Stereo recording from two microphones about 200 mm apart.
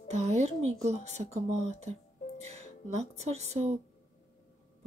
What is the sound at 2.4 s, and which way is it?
Music, 35° right (ahead or behind).